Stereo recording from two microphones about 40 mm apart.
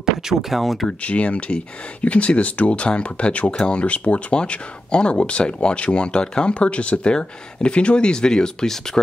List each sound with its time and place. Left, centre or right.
0.0 s speech: centre
0.8 s speech: left